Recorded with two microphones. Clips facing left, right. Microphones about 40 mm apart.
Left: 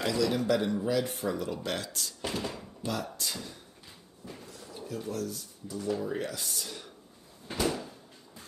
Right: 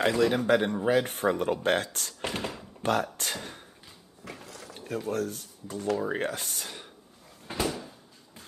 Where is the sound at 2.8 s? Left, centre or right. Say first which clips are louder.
Right 7 dB; right.